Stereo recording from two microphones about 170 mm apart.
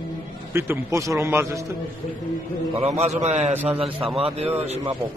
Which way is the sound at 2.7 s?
40° right (ahead or behind).